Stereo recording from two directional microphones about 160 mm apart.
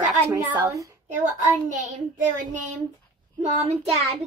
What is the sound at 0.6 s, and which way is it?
Speech, 20° right (ahead or behind).